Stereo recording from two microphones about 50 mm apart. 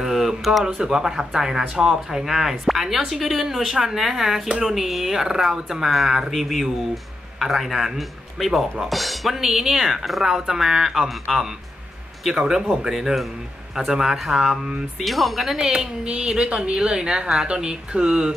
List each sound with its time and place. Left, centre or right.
0.0 s a sound: centre
0.7 s speech: centre
12.4 s speech: centre
15.7 s speech: centre